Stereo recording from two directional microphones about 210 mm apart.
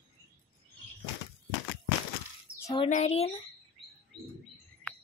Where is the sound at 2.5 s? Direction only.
15° left (ahead or behind).